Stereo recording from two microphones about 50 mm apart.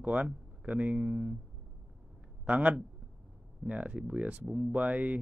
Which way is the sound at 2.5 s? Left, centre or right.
Right.